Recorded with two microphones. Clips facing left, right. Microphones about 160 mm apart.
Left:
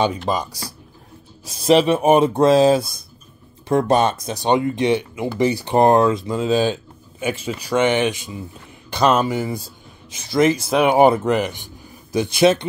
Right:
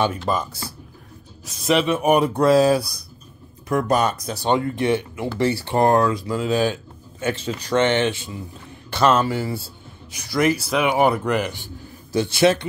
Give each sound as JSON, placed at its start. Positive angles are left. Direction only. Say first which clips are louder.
{"t": 0.0, "sound": "speech", "louder": "left 2 dB", "side_deg": 15}
{"t": 1.4, "sound": "speech", "louder": "left 5 dB", "side_deg": 30}